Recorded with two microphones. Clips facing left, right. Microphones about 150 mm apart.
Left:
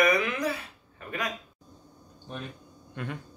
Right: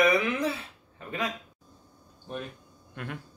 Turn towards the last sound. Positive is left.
turn(degrees=0)  # may be behind; listen again after turning